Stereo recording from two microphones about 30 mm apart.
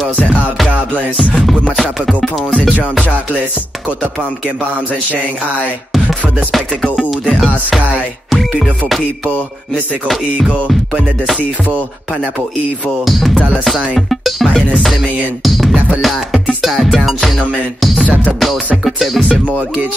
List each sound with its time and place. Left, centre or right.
1.5 s music: centre
13.0 s music: centre
18.9 s music: centre